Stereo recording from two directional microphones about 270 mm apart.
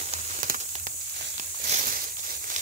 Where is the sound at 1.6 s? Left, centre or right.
Right.